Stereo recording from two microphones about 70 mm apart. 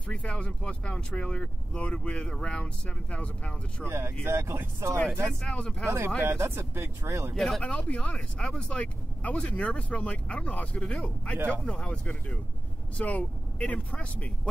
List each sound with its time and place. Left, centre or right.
0.1 s speech: centre
3.9 s speech: right
5.2 s speech: centre
5.9 s speech: right
7.3 s speech: centre
7.6 s speech: centre
11.3 s speech: right
11.6 s speech: centre